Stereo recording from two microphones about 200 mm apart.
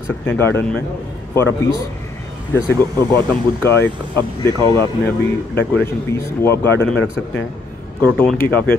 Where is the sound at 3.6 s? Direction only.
10° left (ahead or behind).